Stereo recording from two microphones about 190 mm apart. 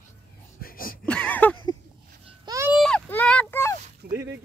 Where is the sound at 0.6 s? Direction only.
50° left (ahead or behind).